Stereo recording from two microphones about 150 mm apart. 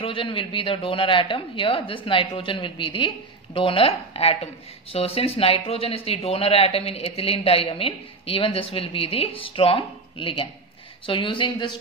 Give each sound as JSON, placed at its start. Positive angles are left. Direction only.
{"t": 0.0, "sound": "speech", "side_deg": 35}